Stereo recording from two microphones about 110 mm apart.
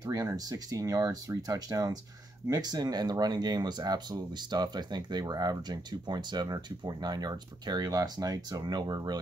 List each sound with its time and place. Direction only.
0.0 s speech: 30° right (ahead or behind)